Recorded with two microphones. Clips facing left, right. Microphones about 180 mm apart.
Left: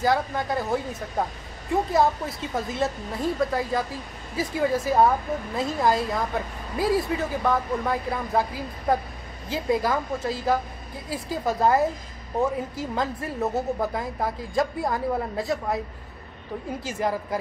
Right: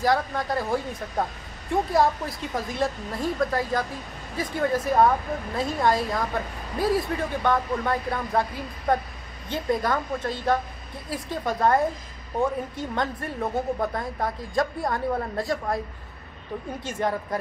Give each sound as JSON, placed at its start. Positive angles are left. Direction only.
{"t": 0.0, "sound": "a woman's voice", "side_deg": 0}
{"t": 17.0, "sound": "a woman's voice", "side_deg": 0}